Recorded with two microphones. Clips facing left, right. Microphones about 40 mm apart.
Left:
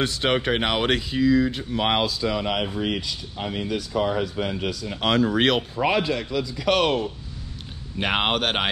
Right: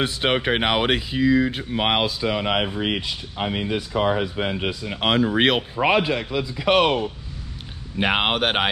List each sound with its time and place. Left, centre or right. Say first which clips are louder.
0.0 s speech: right 1 dB; centre